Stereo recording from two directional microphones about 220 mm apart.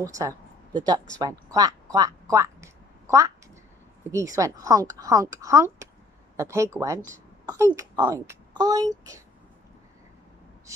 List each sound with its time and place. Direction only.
0.0 s a woman's voice: 15° right (ahead or behind)
7.1 s a sound: 15° right (ahead or behind)
7.7 s speech: 15° right (ahead or behind)